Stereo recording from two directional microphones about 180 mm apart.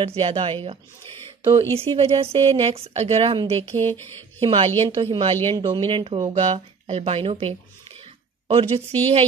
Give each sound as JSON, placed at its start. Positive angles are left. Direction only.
{"t": 0.0, "sound": "a woman's voice", "side_deg": -30}
{"t": 3.7, "sound": "music", "side_deg": 10}
{"t": 4.4, "sound": "a woman's voice", "side_deg": -30}